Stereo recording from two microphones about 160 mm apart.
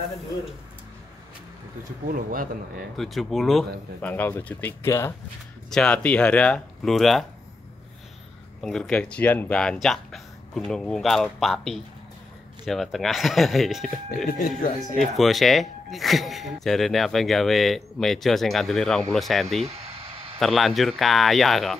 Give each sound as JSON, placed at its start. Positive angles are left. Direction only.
{"t": 2.0, "sound": "speech", "side_deg": -60}
{"t": 3.0, "sound": "speech", "side_deg": 0}
{"t": 4.1, "sound": "speech", "side_deg": 10}
{"t": 5.7, "sound": "speech", "side_deg": 5}
{"t": 8.6, "sound": "speech", "side_deg": 5}
{"t": 19.6, "sound": "a sound", "side_deg": -40}
{"t": 20.3, "sound": "speech", "side_deg": 0}